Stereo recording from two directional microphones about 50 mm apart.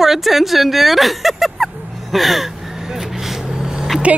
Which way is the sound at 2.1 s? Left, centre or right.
Centre.